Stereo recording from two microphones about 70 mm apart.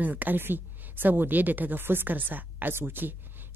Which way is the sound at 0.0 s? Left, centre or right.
Right.